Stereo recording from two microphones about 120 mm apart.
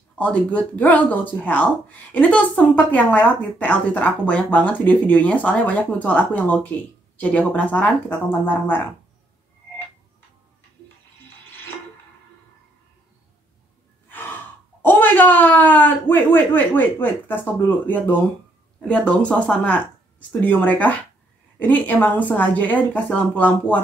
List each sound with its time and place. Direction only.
0.1 s speech: 10° left (ahead or behind)
14.0 s speech: 15° left (ahead or behind)